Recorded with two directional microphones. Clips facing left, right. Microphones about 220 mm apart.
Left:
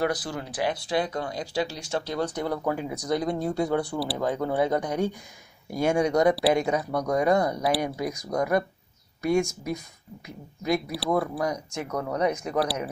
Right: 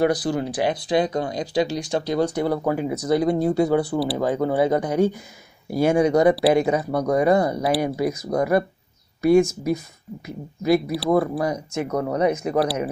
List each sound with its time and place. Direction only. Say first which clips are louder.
0.0 s speech: right 7 dB; 30° right (ahead or behind)
0.7 s speech: right 6 dB; 20° right (ahead or behind)